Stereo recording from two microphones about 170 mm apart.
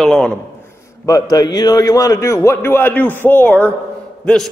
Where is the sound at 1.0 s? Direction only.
20° left (ahead or behind).